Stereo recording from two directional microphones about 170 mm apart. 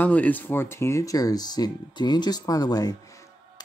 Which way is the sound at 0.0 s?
10° left (ahead or behind).